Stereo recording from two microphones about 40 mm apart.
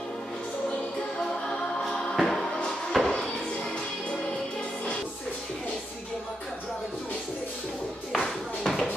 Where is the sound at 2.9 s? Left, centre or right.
Centre.